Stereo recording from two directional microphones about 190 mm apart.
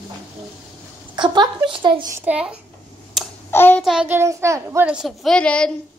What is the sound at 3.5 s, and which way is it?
Child singing, 10° left (ahead or behind).